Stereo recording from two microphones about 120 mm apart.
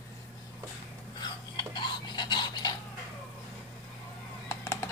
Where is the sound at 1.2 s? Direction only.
35° left (ahead or behind).